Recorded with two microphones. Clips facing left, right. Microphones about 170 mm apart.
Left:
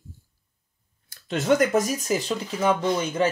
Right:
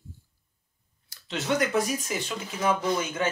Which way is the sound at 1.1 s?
50° left (ahead or behind).